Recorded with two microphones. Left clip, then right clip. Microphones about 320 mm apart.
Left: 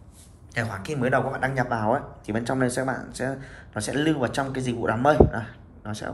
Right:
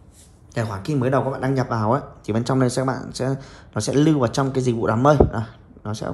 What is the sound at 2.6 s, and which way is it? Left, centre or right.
Speech, centre.